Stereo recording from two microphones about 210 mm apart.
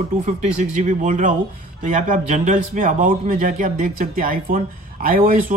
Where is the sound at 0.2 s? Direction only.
35° right (ahead or behind).